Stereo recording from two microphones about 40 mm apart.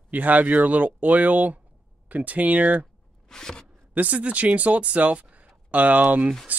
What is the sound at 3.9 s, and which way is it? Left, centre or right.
Speech, right.